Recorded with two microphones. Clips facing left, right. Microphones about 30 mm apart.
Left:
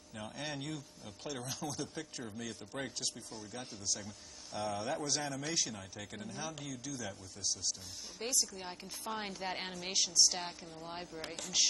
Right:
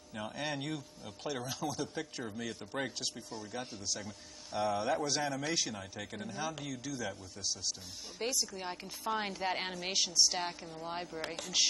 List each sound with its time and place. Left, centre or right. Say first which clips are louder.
0.1 s speech: right 4 dB; centre